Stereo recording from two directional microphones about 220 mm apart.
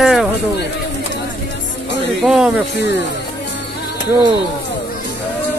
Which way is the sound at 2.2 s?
Centre (ahead or behind).